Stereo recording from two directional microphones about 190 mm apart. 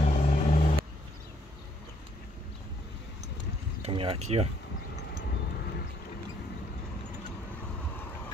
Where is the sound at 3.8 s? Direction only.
30° right (ahead or behind).